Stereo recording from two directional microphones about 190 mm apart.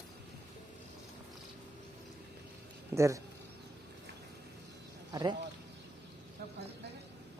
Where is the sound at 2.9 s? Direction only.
15° right (ahead or behind).